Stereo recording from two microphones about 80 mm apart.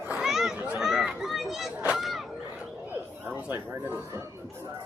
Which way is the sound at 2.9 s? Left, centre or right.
Right.